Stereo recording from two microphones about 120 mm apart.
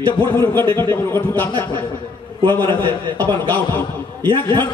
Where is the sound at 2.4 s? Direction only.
40° right (ahead or behind).